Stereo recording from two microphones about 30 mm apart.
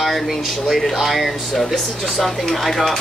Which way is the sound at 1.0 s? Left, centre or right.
Centre.